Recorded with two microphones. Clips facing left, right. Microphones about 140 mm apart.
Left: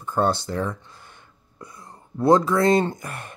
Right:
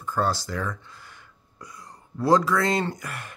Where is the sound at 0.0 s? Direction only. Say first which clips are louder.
Left 3 dB; 25° left (ahead or behind).